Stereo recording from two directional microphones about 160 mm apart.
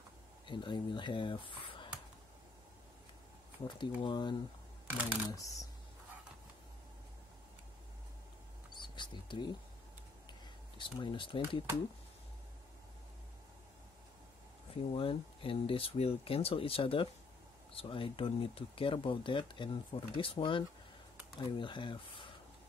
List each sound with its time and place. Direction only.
0.5 s speech: 30° left (ahead or behind)
3.6 s speech: 30° left (ahead or behind)
4.8 s speech: 10° right (ahead or behind)
5.3 s speech: 20° left (ahead or behind)
8.7 s a sound: 30° left (ahead or behind)
10.8 s speech: 30° left (ahead or behind)
14.9 s speech: 35° left (ahead or behind)